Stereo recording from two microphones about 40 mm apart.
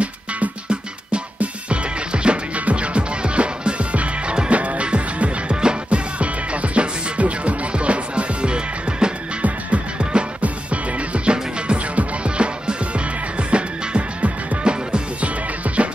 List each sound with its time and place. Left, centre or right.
0.0 s music: right